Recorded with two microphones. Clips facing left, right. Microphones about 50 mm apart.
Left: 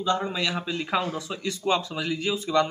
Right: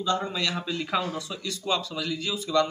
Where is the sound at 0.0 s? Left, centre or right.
Centre.